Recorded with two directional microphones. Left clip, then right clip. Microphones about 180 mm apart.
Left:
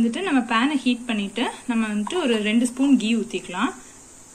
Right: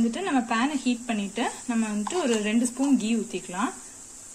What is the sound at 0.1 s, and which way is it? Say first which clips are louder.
Speech: left 4 dB; 35° right (ahead or behind).